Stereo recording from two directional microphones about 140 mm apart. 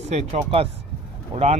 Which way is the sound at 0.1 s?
50° right (ahead or behind).